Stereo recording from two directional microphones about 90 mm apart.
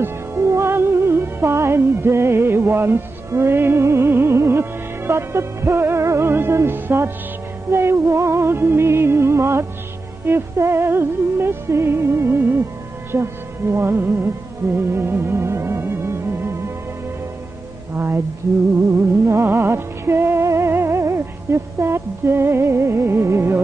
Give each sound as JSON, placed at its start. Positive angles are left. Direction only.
{"t": 0.0, "sound": "music", "side_deg": -30}
{"t": 13.1, "sound": "speech", "side_deg": -30}
{"t": 14.8, "sound": "music", "side_deg": -25}
{"t": 17.9, "sound": "a sound", "side_deg": -25}
{"t": 18.9, "sound": "music", "side_deg": -30}